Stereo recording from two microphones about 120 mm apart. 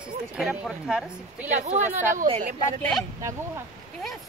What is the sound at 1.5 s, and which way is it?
Speech, 80° right.